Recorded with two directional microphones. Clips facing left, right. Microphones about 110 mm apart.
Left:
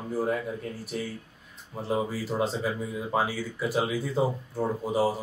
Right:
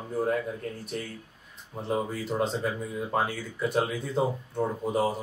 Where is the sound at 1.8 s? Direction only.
Centre (ahead or behind).